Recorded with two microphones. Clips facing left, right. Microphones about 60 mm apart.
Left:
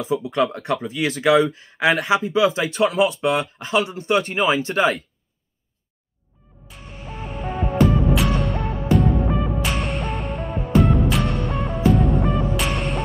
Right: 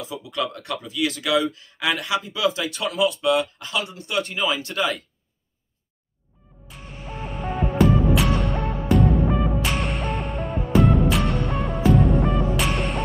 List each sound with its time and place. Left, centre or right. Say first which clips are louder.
0.0 s speech: left 7 dB; left
7.3 s music: left 1 dB; centre